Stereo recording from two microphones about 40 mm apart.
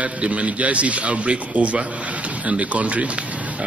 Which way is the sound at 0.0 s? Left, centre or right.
Right.